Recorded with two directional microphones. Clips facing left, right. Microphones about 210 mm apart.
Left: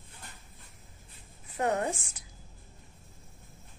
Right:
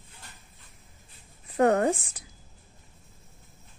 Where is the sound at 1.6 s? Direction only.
55° right (ahead or behind).